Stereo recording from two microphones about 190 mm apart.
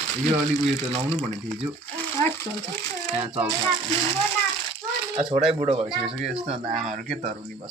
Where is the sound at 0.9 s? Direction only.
35° right (ahead or behind).